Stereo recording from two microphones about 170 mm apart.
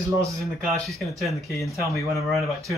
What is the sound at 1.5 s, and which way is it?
Speech, 20° left (ahead or behind).